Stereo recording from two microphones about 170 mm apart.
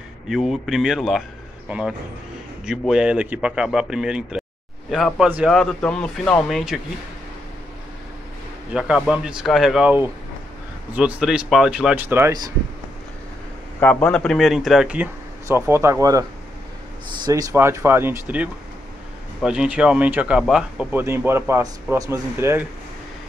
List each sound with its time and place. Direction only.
0.3 s speech: centre (ahead or behind)
8.7 s speech: 5° right (ahead or behind); by 12.5 s 20° right (ahead or behind)
13.7 s speech: 10° left (ahead or behind); by 22.7 s 15° right (ahead or behind)